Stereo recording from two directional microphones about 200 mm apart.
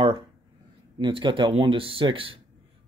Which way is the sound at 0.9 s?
25° right (ahead or behind).